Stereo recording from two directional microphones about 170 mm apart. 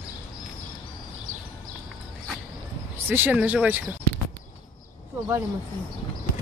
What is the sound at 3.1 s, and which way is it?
Speech, 10° right (ahead or behind).